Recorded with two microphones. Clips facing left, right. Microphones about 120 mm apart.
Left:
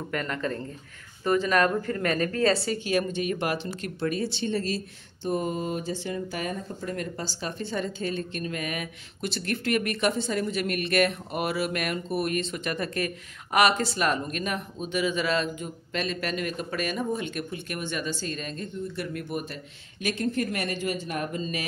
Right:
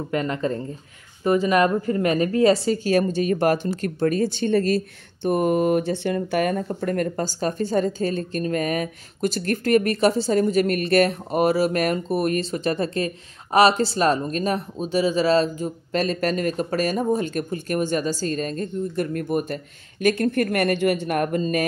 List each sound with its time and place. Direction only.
0.1 s speech: 20° right (ahead or behind)
2.5 s speech: 25° right (ahead or behind)
2.8 s speech: 40° right (ahead or behind)